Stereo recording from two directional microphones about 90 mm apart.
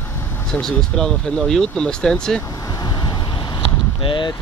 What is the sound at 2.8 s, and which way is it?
Vehicle, 45° left (ahead or behind).